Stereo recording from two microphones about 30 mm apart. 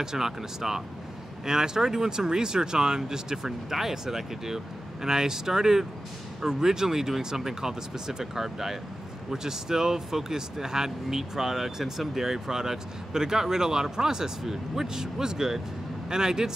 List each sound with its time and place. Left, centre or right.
0.0 s speech: centre